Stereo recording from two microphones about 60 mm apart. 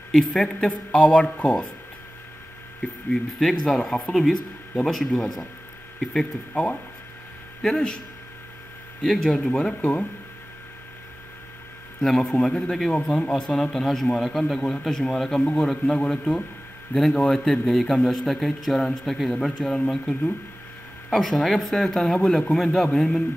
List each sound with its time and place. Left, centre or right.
0.1 s a man's voice: centre
3.1 s speech: centre
6.5 s a man's voice: centre
9.0 s speech: centre
9.5 s speech: centre
12.0 s a man's voice: centre
21.2 s a man's voice: centre